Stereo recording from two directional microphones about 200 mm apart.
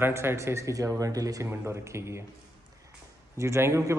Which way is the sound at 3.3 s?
15° right (ahead or behind).